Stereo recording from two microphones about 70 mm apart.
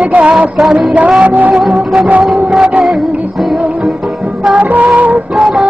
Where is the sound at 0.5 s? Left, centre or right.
Centre.